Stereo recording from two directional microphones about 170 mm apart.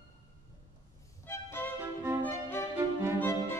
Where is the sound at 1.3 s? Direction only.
15° left (ahead or behind).